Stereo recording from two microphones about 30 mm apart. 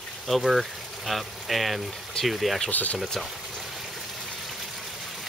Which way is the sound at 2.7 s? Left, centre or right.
Left.